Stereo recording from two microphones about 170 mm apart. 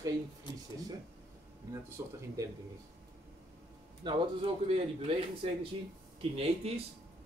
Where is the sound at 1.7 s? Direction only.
15° right (ahead or behind).